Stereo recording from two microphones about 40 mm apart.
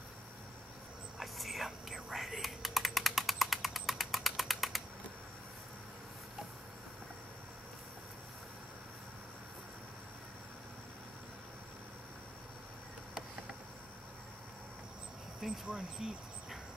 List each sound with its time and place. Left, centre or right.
1.2 s computer keyboard: centre
15.6 s speech: right